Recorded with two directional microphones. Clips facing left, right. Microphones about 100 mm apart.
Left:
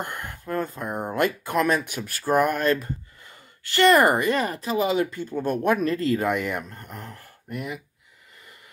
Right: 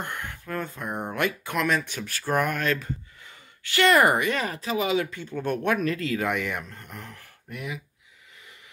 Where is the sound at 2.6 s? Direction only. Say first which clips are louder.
Left 4 dB; 35° left (ahead or behind).